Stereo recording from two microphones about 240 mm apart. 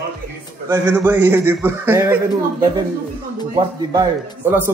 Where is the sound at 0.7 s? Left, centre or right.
Centre.